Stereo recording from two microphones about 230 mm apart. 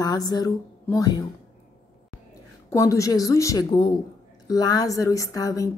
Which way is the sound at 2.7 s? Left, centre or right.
Centre.